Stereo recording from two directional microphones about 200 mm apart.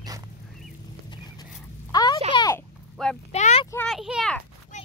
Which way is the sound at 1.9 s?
20° left (ahead or behind).